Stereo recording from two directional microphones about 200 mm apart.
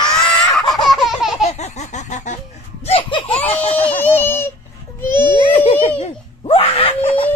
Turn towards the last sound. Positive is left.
turn(degrees=25)  # may be behind; listen again after turning